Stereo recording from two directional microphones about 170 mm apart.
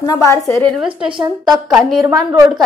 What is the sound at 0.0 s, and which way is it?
Speech, 20° left (ahead or behind).